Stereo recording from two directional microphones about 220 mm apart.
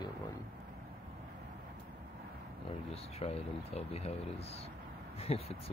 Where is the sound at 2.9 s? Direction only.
25° left (ahead or behind).